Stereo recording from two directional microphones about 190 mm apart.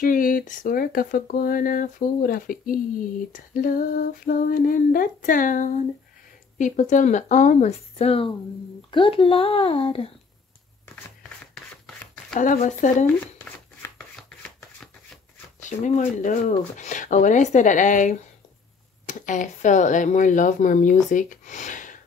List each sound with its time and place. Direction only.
0.0 s speech: 45° left (ahead or behind); by 10.1 s 30° left (ahead or behind)
11.5 s a sound: centre (ahead or behind)
12.4 s speech: 40° left (ahead or behind)
13.8 s chopping: 5° left (ahead or behind)
15.8 s speech: 40° left (ahead or behind)